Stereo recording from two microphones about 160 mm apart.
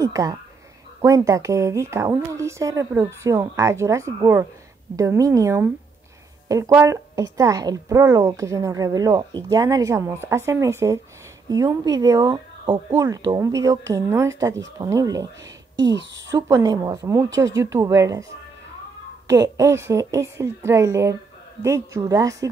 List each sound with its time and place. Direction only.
0.0 s a woman's voice: 20° right (ahead or behind)
6.7 s a woman's voice: 15° right (ahead or behind)
16.3 s a woman's voice: 20° right (ahead or behind)
19.2 s a woman's voice: 20° right (ahead or behind)